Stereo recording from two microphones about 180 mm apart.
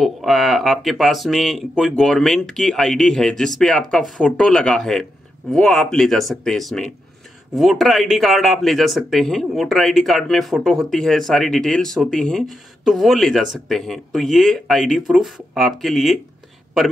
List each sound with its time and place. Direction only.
0.0 s speech: centre (ahead or behind)